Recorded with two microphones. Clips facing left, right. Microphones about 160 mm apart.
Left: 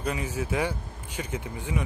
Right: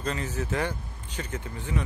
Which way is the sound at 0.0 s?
10° left (ahead or behind).